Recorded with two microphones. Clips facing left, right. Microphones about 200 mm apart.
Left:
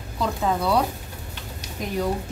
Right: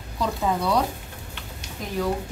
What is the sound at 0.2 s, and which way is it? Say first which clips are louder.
Speech: left 1 dB; centre (ahead or behind).